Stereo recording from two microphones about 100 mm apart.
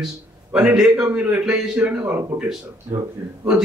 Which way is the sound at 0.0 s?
10° right (ahead or behind).